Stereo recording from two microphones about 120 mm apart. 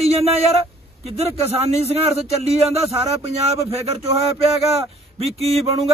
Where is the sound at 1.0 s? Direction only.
60° right (ahead or behind).